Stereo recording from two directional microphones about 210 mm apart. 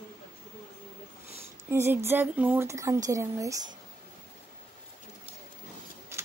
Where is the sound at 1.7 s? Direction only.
10° right (ahead or behind).